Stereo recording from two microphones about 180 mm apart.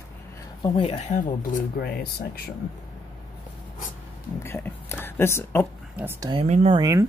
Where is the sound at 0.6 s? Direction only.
30° left (ahead or behind).